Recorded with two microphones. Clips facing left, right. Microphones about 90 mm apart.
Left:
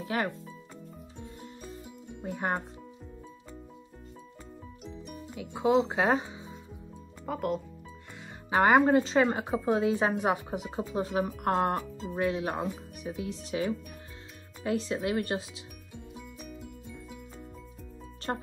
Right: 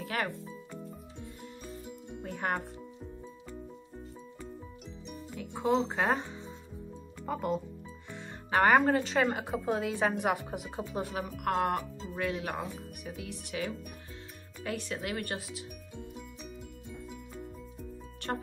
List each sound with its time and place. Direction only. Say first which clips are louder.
0.0 s a woman's voice: left 3 dB; 20° left (ahead or behind)
1.9 s music: left 3 dB; 15° left (ahead or behind)
5.0 s speech: right 1 dB; 5° left (ahead or behind)
7.2 s speech: left 1 dB; centre (ahead or behind)
8.5 s a woman's voice: left 2 dB; 15° left (ahead or behind)
11.2 s speech: left 2 dB; 35° left (ahead or behind)
12.1 s a woman's voice: left 5 dB; 20° left (ahead or behind)
18.3 s a woman's voice: left 2 dB; 20° left (ahead or behind)